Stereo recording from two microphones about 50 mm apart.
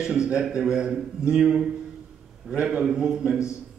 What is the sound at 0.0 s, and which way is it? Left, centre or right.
A man's voice, centre.